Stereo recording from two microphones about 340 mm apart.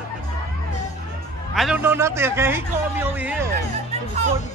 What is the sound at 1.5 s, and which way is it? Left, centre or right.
A man's voice, centre.